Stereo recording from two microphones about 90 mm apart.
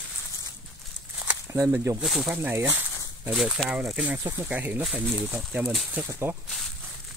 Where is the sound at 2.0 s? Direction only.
Centre (ahead or behind).